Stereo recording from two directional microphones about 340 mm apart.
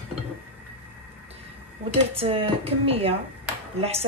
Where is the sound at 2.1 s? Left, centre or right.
Centre.